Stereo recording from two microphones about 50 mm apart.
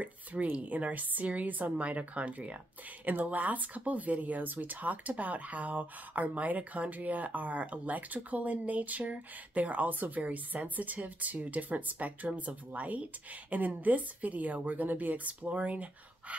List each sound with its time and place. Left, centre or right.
0.0 s speech: right